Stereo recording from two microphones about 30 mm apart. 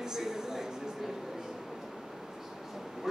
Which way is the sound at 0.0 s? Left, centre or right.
Centre.